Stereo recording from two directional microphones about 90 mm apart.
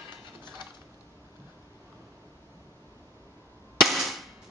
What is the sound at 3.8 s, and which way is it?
Cap gun, centre (ahead or behind).